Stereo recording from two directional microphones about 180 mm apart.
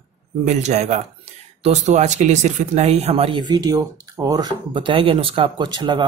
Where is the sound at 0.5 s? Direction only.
40° right (ahead or behind).